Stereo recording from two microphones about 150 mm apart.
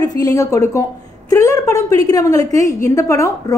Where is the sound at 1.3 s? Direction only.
20° left (ahead or behind).